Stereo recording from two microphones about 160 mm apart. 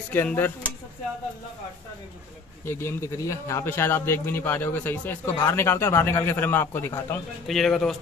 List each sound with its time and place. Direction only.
0.1 s a man's voice: 10° left (ahead or behind)
2.6 s a man's voice: 15° left (ahead or behind)
7.4 s speech: centre (ahead or behind)